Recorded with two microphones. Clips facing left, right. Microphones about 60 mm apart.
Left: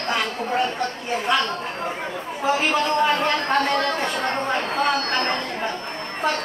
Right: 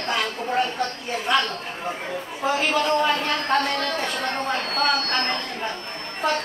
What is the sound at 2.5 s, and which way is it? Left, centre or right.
A man's voice, centre.